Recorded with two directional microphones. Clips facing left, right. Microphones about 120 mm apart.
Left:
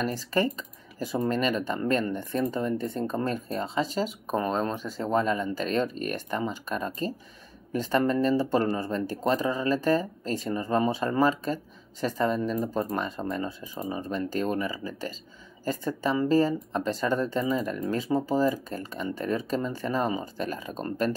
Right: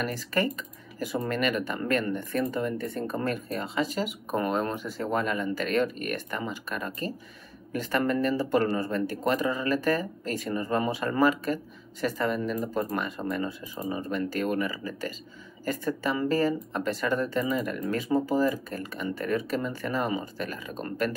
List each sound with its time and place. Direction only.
0.0 s speech: 25° left (ahead or behind)